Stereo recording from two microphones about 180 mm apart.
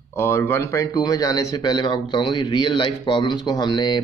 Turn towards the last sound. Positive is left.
turn(degrees=25)  # may be behind; listen again after turning